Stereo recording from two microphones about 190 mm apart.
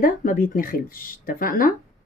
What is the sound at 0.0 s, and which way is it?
Speech, 45° left (ahead or behind).